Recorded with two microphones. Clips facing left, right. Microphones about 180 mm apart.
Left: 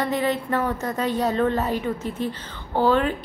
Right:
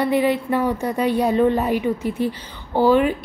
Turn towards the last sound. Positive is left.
turn(degrees=-10)  # may be behind; listen again after turning